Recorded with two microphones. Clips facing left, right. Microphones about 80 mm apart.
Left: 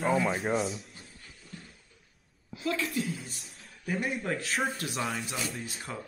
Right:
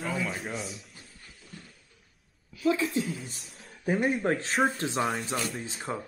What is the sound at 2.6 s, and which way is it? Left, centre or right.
Speech, centre.